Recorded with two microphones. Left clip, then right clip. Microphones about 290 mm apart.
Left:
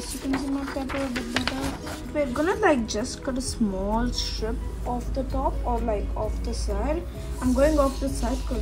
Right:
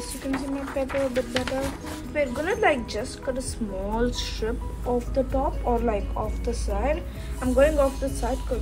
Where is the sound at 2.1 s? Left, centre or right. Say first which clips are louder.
Even; centre.